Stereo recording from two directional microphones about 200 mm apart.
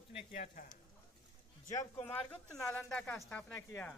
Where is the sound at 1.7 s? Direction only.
10° left (ahead or behind).